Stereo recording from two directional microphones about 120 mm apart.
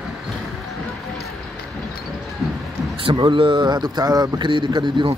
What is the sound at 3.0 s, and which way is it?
A man's voice, 45° right (ahead or behind).